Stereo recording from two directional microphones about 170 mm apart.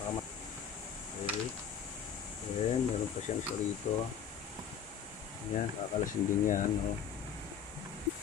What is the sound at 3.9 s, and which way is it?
Speech, 45° left (ahead or behind).